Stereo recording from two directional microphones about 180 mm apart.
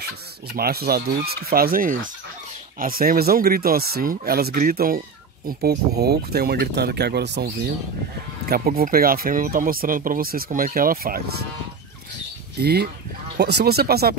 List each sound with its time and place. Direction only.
0.0 s speech: 60° right (ahead or behind)
8.5 s speech: 55° right (ahead or behind)
12.5 s speech: 60° right (ahead or behind)